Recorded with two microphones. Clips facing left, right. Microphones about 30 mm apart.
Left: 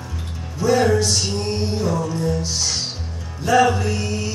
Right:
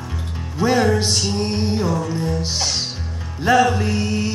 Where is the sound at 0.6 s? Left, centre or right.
Right.